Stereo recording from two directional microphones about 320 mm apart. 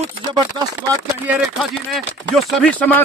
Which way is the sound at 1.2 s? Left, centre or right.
Centre.